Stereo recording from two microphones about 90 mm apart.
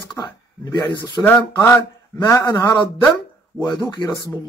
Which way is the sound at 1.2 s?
25° left (ahead or behind).